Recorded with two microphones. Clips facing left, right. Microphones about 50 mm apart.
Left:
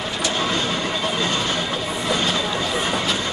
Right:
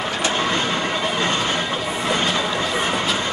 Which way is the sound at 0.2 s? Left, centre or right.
Right.